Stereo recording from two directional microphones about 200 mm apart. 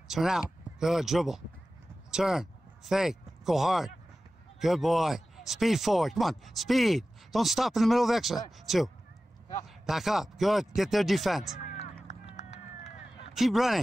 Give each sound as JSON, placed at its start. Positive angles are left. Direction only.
{"t": 0.1, "sound": "speech", "side_deg": 0}
{"t": 12.4, "sound": "a sound", "side_deg": 35}
{"t": 13.3, "sound": "speech", "side_deg": 0}